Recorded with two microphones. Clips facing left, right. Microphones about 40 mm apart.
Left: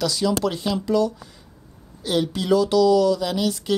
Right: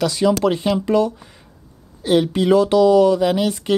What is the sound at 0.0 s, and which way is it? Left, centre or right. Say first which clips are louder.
Speech: right 5 dB; right.